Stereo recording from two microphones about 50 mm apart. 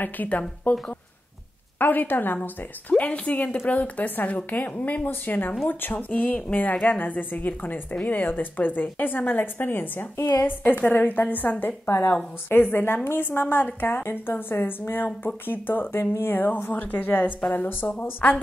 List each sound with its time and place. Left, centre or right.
0.0 s a woman's voice: left